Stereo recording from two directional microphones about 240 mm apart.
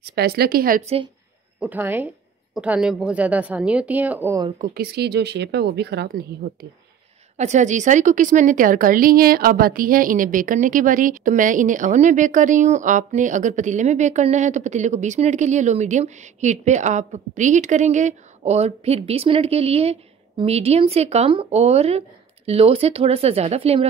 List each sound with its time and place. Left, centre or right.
0.0 s speech: right
1.6 s a woman's voice: centre
4.5 s speech: right
7.3 s a woman's voice: right